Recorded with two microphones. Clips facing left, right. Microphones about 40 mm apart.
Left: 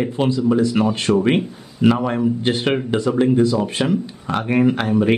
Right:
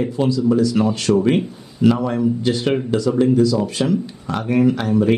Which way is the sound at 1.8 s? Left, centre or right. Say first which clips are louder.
Even; left.